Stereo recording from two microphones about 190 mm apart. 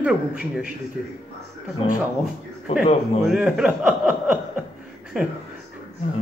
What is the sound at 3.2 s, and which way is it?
Speech, 5° right (ahead or behind).